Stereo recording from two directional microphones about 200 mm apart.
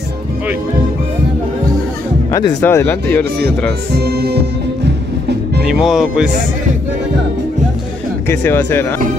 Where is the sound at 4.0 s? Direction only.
55° right (ahead or behind).